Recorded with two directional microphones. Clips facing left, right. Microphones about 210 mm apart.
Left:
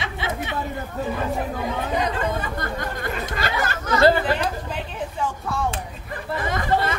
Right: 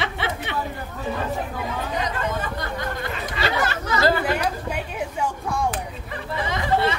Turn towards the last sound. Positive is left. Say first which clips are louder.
# even
turn(degrees=50)  # may be behind; listen again after turning